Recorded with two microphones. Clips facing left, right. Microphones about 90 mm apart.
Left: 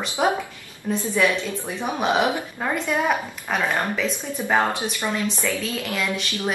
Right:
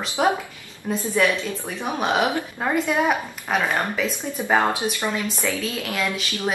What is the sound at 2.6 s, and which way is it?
A woman's voice, 15° right (ahead or behind).